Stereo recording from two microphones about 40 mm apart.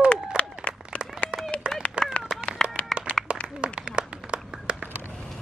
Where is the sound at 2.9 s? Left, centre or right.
Centre.